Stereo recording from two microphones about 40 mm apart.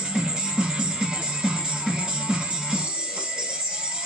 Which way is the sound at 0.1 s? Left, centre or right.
Centre.